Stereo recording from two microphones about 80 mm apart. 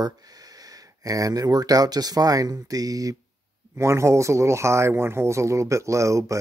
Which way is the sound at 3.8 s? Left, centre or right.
Right.